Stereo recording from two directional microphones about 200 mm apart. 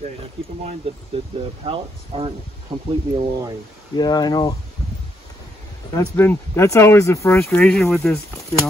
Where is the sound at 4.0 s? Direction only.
20° left (ahead or behind).